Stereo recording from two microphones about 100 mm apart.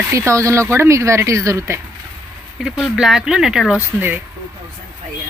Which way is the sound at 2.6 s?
5° right (ahead or behind).